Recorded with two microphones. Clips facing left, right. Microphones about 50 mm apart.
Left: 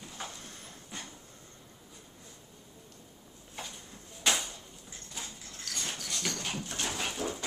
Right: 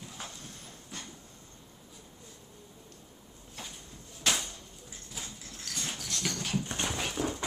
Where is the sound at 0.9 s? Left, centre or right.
Centre.